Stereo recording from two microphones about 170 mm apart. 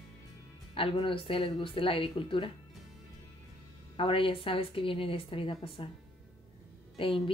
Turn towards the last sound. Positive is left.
turn(degrees=30)  # may be behind; listen again after turning